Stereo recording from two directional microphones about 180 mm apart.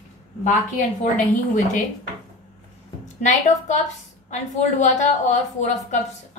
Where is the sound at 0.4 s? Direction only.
45° left (ahead or behind).